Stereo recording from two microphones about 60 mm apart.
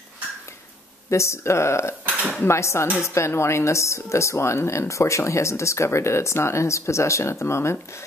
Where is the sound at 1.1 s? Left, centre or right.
Left.